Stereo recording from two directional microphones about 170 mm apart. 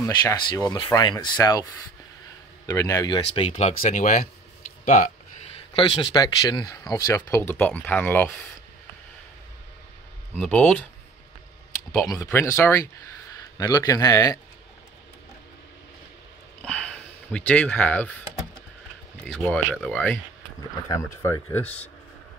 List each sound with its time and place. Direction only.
0.0 s speech: 20° left (ahead or behind)
3.3 s speech: 35° left (ahead or behind)
3.8 s speech: 50° left (ahead or behind)
5.8 s speech: 30° left (ahead or behind); by 8.4 s 10° left (ahead or behind)
10.3 s speech: 5° left (ahead or behind)
12.1 s a man's voice: 15° left (ahead or behind)
16.6 s a sound: 5° left (ahead or behind)
19.2 s speech: 5° left (ahead or behind)